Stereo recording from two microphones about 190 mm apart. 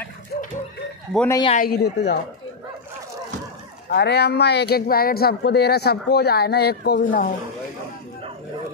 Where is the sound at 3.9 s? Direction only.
60° left (ahead or behind).